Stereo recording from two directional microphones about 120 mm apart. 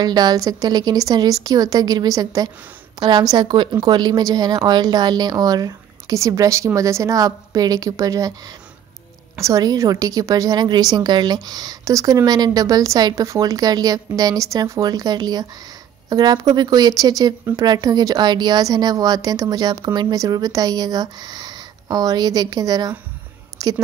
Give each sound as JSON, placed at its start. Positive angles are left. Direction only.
{"t": 0.0, "sound": "speech", "side_deg": -35}
{"t": 9.4, "sound": "a woman's voice", "side_deg": -30}